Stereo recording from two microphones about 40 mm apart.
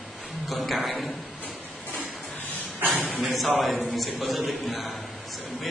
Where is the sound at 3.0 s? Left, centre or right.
Right.